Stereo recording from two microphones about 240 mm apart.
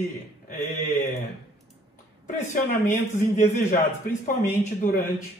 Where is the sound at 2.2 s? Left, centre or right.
Left.